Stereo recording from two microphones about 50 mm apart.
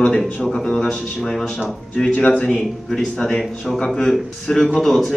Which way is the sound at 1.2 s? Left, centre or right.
Centre.